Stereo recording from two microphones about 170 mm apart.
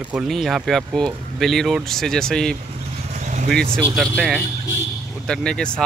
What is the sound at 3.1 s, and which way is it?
Vehicle, 45° right (ahead or behind).